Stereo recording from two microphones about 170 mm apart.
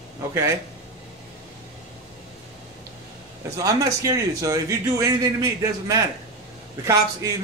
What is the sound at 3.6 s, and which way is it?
A man's voice, 20° right (ahead or behind).